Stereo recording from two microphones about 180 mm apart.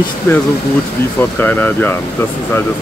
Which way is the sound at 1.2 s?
10° left (ahead or behind).